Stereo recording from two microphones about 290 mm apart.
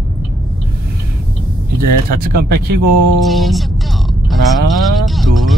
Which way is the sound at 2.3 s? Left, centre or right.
Right.